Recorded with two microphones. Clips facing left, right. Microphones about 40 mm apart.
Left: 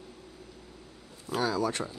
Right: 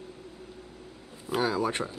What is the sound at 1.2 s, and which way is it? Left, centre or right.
Speech, right.